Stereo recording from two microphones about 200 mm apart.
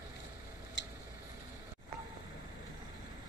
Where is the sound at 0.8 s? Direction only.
65° left (ahead or behind).